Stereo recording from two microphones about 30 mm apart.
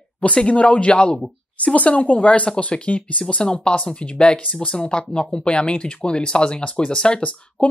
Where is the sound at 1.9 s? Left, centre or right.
Left.